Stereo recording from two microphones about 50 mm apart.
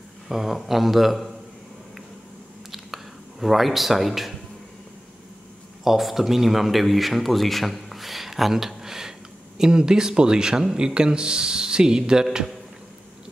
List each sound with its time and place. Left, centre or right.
0.3 s a man's voice: centre
2.7 s a sound: centre
5.9 s a man's voice: centre